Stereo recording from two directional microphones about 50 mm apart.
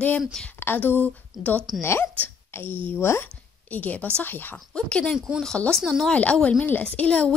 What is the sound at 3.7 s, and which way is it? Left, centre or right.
Speech, left.